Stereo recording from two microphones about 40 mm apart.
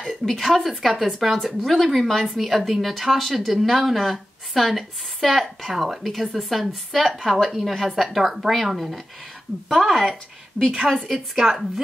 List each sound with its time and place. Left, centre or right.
0.0 s speech: centre
10.6 s a woman's voice: right
10.9 s speech: centre